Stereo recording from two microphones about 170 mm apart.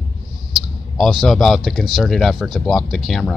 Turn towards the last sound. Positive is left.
turn(degrees=0)  # may be behind; listen again after turning